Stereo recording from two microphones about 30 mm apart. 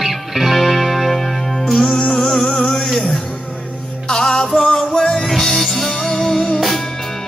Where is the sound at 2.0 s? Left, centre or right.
Left.